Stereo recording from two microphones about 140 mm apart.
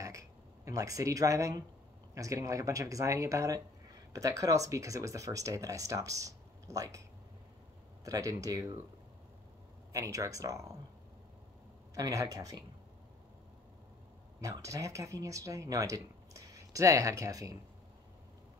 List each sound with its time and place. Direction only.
0.0 s a sound: 25° right (ahead or behind)
2.1 s speech: 25° right (ahead or behind)
9.9 s speech: 25° right (ahead or behind)
11.9 s speech: 25° right (ahead or behind)
14.4 s speech: 20° right (ahead or behind)